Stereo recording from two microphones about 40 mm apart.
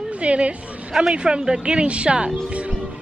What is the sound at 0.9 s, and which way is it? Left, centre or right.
Speech, centre.